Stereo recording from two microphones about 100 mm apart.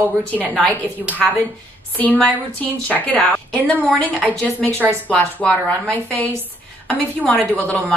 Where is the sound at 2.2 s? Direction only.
10° left (ahead or behind).